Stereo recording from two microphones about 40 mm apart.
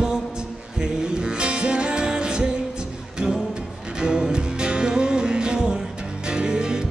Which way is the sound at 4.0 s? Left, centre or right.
Centre.